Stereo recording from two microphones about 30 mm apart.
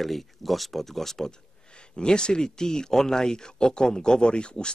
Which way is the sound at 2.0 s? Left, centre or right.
Left.